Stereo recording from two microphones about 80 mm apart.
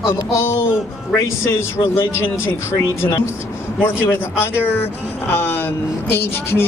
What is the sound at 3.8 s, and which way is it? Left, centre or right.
A man's voice, left.